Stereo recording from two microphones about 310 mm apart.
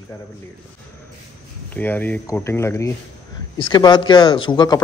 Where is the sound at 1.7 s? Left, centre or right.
Centre.